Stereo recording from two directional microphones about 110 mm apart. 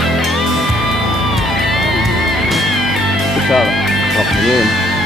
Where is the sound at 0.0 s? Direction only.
Centre (ahead or behind).